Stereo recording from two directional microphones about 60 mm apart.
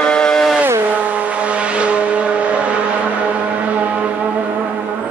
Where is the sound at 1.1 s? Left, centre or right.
Right.